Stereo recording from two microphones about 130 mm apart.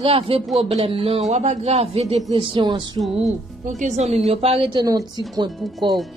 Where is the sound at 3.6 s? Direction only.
70° right (ahead or behind).